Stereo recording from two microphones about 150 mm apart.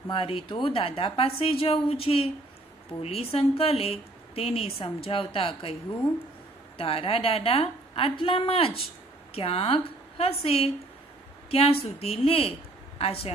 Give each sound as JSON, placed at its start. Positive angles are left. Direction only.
{"t": 0.1, "sound": "speech", "side_deg": 35}
{"t": 6.8, "sound": "a woman's voice", "side_deg": 40}